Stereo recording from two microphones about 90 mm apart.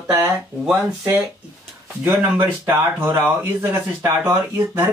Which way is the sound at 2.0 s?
25° right (ahead or behind).